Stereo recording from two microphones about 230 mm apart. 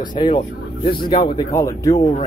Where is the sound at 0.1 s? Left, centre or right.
Centre.